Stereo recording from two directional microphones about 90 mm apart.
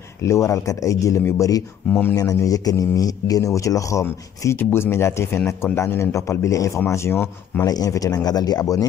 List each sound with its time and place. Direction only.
0.2 s a man's voice: 35° left (ahead or behind)
1.9 s a man's voice: 20° left (ahead or behind)
2.1 s a man's voice: 40° left (ahead or behind)
4.6 s a man's voice: 20° left (ahead or behind)
7.6 s speech: 45° left (ahead or behind)